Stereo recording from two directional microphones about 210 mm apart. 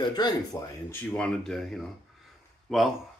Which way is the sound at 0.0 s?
20° left (ahead or behind).